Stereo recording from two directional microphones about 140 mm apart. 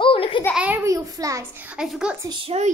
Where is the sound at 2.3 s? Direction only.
40° right (ahead or behind).